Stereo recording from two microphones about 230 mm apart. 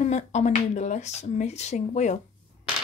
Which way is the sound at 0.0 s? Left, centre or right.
Left.